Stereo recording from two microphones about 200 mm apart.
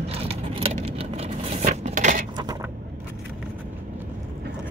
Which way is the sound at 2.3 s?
20° right (ahead or behind).